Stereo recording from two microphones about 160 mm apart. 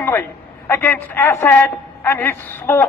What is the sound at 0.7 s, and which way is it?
A woman's voice, 15° left (ahead or behind).